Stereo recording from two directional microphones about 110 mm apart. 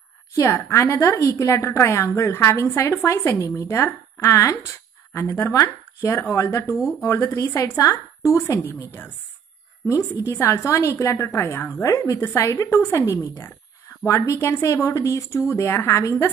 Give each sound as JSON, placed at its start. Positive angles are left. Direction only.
{"t": 0.3, "sound": "a woman's voice", "side_deg": 30}
{"t": 9.8, "sound": "a woman's voice", "side_deg": 25}